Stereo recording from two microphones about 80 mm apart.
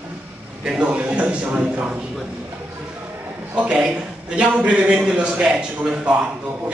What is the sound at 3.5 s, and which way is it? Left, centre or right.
A man's voice, centre.